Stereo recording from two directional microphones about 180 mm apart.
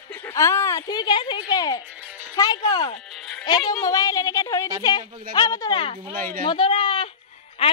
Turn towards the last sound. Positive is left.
turn(degrees=30)  # may be behind; listen again after turning